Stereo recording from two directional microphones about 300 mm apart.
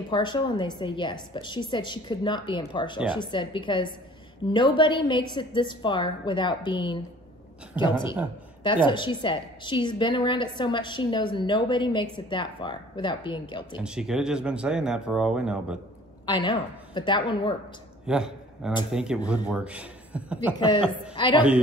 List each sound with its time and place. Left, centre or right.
0.1 s a woman's voice: centre
13.8 s speech: centre
16.3 s a woman's voice: centre
18.0 s a man's voice: centre
20.5 s a woman's voice: centre